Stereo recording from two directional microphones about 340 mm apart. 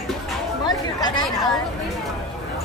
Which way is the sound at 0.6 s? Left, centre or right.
Centre.